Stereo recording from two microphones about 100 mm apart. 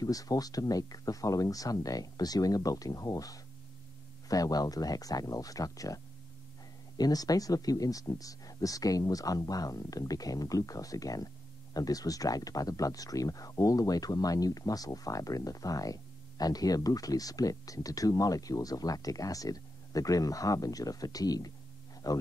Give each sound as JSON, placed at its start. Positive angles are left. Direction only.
{"t": 0.0, "sound": "speech", "side_deg": 35}
{"t": 7.0, "sound": "speech", "side_deg": 40}